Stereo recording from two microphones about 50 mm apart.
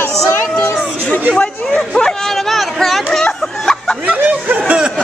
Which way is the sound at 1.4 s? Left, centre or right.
Centre.